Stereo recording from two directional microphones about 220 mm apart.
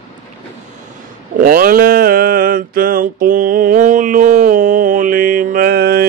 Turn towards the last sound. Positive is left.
turn(degrees=-45)  # may be behind; listen again after turning